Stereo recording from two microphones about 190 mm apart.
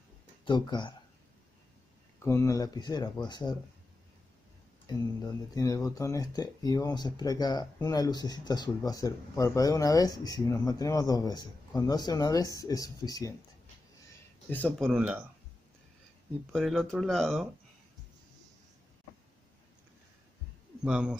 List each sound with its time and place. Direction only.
0.5 s speech: 25° left (ahead or behind)
2.2 s speech: 15° left (ahead or behind)
4.8 s speech: 20° left (ahead or behind)
14.5 s speech: 10° left (ahead or behind)
14.9 s speech: 5° right (ahead or behind)
16.5 s speech: centre (ahead or behind)
20.8 s speech: 5° right (ahead or behind)